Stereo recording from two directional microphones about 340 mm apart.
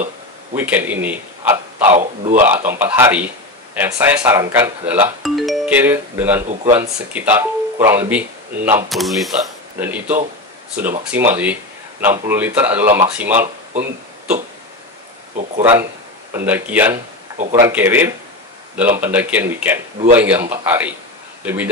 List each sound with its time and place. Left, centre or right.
0.6 s speech: centre
1.0 s a sound: centre
2.0 s a man's voice: right
2.4 s speech: centre
15.6 s speech: centre